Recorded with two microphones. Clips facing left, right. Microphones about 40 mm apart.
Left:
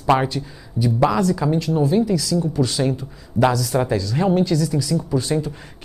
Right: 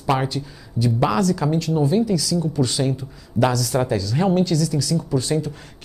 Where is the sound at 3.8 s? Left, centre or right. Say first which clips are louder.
Left 1 dB; centre.